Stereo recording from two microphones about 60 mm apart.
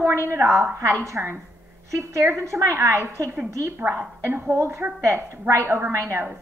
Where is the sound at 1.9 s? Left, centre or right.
Right.